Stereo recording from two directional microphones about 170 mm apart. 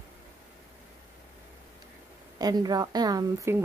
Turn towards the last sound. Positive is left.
turn(degrees=-20)  # may be behind; listen again after turning